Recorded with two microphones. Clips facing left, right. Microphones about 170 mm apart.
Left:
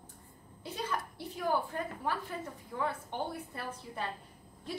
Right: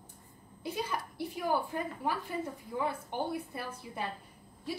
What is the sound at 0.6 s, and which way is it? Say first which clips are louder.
Speech: right 1 dB; 10° right (ahead or behind).